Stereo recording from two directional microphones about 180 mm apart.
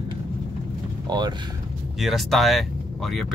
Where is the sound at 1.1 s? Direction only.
25° right (ahead or behind).